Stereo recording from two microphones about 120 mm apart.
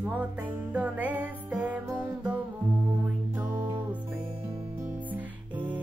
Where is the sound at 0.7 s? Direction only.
15° right (ahead or behind).